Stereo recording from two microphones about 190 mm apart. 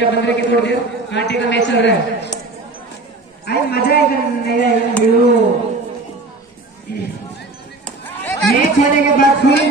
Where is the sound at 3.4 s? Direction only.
55° left (ahead or behind).